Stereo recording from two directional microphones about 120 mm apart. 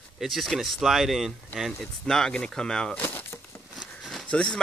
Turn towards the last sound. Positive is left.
turn(degrees=5)  # may be behind; listen again after turning